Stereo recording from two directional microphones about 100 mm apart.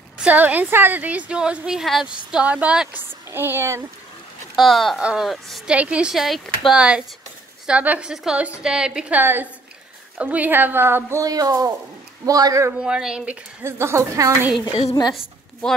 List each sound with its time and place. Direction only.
0.2 s a woman's voice: 15° right (ahead or behind)
2.9 s a woman's voice: 20° right (ahead or behind)
4.6 s a woman's voice: centre (ahead or behind)
6.8 s a woman's voice: 10° right (ahead or behind)
9.2 s a woman's voice: 20° right (ahead or behind)
11.2 s speech: 35° right (ahead or behind)
12.7 s a woman's voice: 10° right (ahead or behind)
13.7 s a woman's voice: 25° right (ahead or behind)
15.6 s speech: 10° left (ahead or behind)